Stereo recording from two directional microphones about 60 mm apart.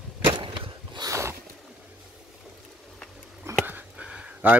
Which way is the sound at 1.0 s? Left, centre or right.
Right.